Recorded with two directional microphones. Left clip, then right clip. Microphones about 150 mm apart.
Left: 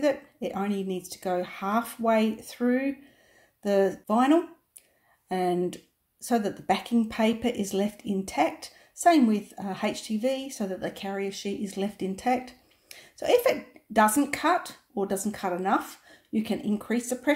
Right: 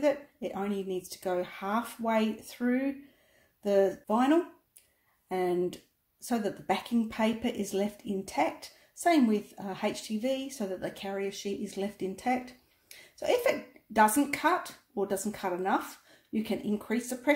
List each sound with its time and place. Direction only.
0.0 s speech: 20° left (ahead or behind)